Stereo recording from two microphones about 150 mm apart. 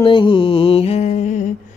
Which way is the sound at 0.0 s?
35° left (ahead or behind).